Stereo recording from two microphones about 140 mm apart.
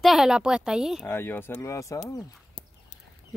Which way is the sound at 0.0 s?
Centre (ahead or behind).